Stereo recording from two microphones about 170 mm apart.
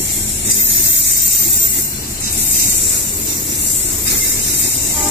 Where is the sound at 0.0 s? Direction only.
90° left.